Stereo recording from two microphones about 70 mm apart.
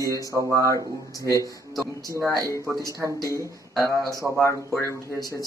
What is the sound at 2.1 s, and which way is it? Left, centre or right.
Speech, right.